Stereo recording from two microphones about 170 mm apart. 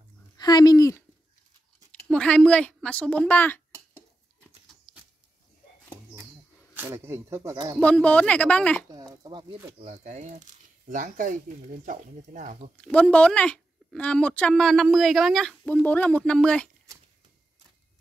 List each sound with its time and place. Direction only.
0.4 s speech: 25° left (ahead or behind)
2.0 s speech: 5° left (ahead or behind)
6.7 s speech: 15° right (ahead or behind)
7.8 s speech: 10° left (ahead or behind)
8.9 s speech: 25° right (ahead or behind)
9.8 s speech: 40° right (ahead or behind)
12.8 s speech: 5° left (ahead or behind)